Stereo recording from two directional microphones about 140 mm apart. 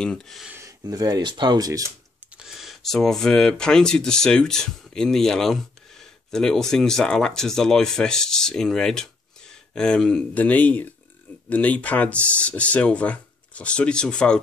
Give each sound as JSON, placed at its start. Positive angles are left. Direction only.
{"t": 0.0, "sound": "speech", "side_deg": 5}
{"t": 0.5, "sound": "speech", "side_deg": -20}
{"t": 2.3, "sound": "speech", "side_deg": -5}